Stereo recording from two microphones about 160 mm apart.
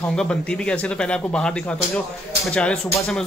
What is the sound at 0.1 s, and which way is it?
Speech, 5° left (ahead or behind).